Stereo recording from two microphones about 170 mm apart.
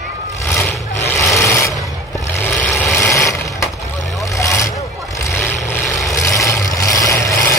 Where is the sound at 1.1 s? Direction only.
15° left (ahead or behind).